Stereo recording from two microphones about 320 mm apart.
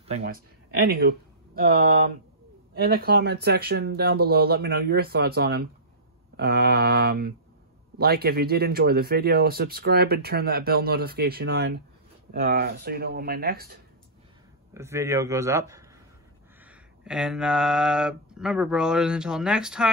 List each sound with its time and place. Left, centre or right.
0.2 s speech: right
2.8 s speech: right
14.7 s a man's voice: centre
16.6 s speech: centre